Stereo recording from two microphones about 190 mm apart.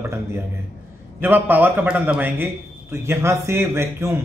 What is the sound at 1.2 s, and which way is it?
A man's voice, 10° right (ahead or behind).